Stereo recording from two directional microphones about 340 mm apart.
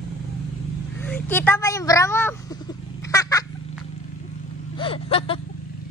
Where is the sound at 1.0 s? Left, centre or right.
Centre.